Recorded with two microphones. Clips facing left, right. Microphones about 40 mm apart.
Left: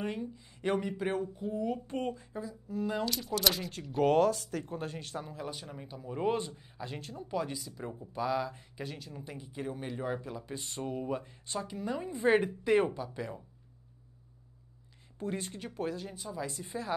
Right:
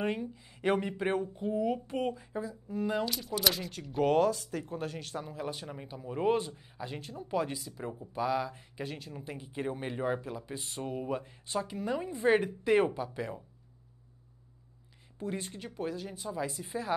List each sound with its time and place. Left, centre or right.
0.0 s speech: centre
1.2 s speech: right
1.5 s speech: centre
12.1 s a woman's voice: centre
12.7 s speech: centre
15.8 s speech: centre